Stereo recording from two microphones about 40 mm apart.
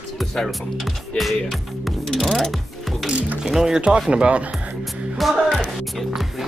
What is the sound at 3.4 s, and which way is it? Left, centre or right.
Speech, centre.